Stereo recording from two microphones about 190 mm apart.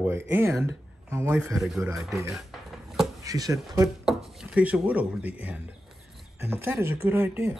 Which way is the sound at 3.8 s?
Centre (ahead or behind).